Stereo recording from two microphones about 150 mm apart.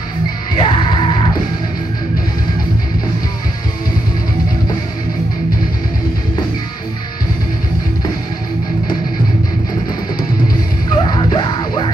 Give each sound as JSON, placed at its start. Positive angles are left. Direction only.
{"t": 0.6, "sound": "music", "side_deg": 35}
{"t": 11.0, "sound": "music", "side_deg": 35}